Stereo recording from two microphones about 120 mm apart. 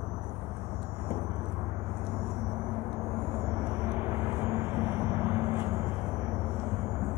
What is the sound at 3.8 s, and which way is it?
Vehicle, 15° right (ahead or behind).